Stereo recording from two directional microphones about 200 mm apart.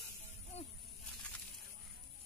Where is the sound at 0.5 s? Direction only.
35° left (ahead or behind).